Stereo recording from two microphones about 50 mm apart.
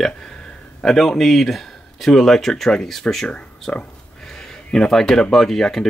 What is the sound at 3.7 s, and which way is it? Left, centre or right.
Speech, left.